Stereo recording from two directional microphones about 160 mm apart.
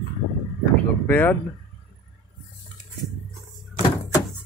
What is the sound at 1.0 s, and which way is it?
Speech, 10° left (ahead or behind).